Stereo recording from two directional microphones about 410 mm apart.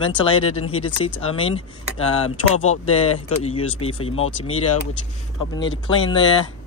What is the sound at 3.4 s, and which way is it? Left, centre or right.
Speech, centre.